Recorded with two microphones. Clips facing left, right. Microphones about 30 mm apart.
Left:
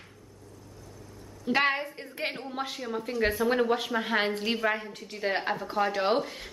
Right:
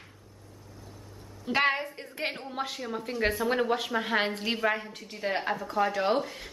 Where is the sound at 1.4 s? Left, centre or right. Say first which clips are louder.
Even; centre.